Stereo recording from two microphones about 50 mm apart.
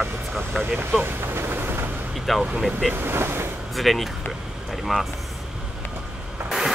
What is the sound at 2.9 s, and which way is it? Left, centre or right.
Speech, right.